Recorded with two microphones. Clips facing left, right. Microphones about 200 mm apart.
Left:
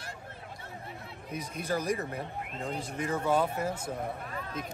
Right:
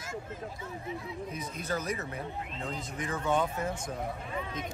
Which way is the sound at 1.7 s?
30° left (ahead or behind).